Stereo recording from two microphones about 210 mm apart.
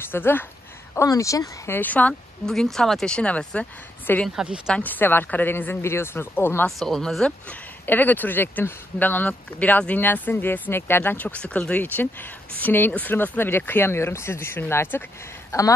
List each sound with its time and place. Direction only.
0.1 s speech: 10° left (ahead or behind)